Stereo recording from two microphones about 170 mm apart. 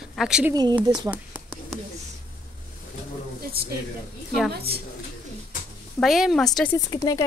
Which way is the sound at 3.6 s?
65° right (ahead or behind).